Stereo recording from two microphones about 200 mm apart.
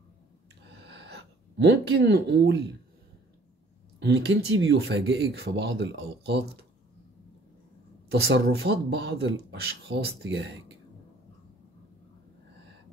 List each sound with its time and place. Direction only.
0.7 s a sound: 60° right (ahead or behind)
4.0 s speech: 60° right (ahead or behind)
8.1 s speech: 55° right (ahead or behind)
10.2 s speech: 65° right (ahead or behind)